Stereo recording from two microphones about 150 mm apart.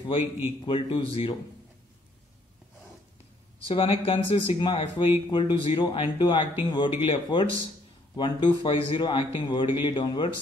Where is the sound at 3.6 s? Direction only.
40° left (ahead or behind).